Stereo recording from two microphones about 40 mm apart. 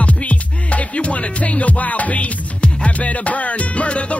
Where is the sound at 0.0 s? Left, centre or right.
Left.